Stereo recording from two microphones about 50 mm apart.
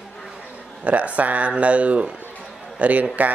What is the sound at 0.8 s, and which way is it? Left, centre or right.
Speech, right.